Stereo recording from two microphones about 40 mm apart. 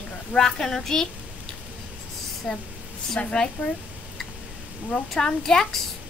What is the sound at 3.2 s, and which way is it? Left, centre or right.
Speech, left.